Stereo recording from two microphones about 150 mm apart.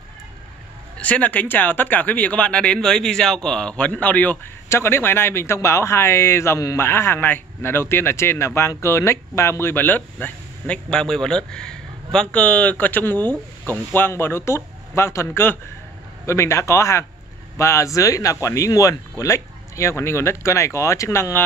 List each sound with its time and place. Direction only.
0.9 s speech: 10° left (ahead or behind)